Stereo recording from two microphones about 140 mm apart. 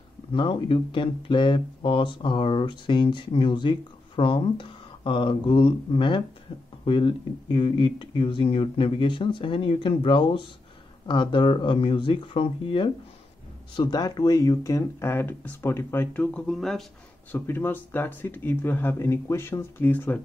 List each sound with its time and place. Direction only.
0.3 s speech: 35° left (ahead or behind); by 16.8 s 5° left (ahead or behind)
17.3 s speech: 15° left (ahead or behind)